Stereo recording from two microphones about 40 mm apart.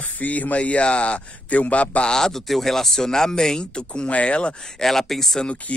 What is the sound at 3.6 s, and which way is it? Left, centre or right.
Speech, left.